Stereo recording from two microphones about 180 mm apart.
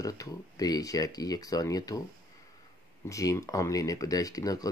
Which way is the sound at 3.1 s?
15° left (ahead or behind).